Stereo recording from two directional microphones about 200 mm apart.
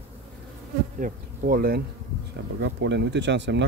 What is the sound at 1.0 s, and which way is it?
Speech, 45° right (ahead or behind).